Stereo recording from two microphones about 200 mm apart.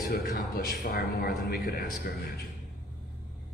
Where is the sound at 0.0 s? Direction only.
50° left (ahead or behind).